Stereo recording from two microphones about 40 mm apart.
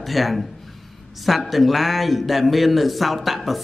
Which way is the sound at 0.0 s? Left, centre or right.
Centre.